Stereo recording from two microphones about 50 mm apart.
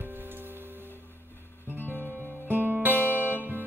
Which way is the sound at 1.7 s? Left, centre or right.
Left.